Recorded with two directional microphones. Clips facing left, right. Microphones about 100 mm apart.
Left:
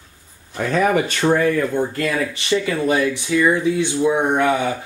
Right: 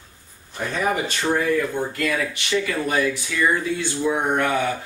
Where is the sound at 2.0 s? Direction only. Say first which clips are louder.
Left 3 dB; 25° left (ahead or behind).